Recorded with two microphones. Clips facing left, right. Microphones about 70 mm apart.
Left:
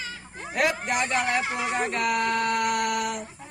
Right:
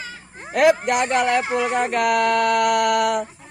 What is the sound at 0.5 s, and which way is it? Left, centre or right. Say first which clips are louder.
Speech: right 9 dB; right.